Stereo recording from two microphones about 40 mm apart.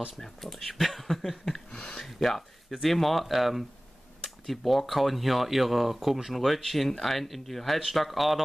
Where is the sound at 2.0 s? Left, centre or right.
Centre.